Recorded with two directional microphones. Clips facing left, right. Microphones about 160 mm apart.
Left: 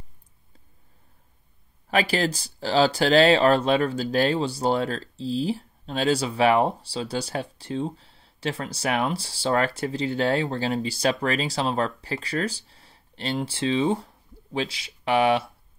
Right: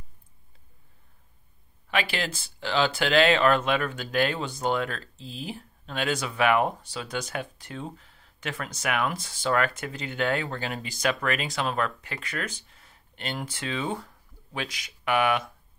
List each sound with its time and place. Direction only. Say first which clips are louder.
1.9 s speech: left 6 dB; 40° left (ahead or behind)